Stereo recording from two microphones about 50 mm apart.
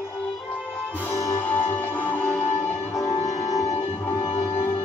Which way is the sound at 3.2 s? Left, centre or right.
Left.